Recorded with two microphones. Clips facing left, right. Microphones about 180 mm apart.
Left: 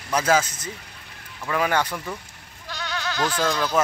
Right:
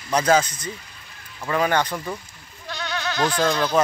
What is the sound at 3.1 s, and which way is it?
Speech, 15° right (ahead or behind).